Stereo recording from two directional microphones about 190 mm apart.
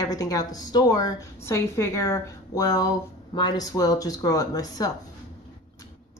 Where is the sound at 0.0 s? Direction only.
20° left (ahead or behind).